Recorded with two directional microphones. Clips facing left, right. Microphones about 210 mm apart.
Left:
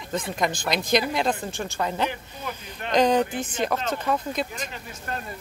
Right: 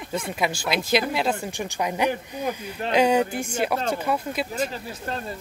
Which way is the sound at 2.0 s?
40° right (ahead or behind).